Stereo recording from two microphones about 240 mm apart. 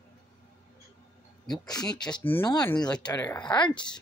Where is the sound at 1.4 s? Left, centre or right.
Centre.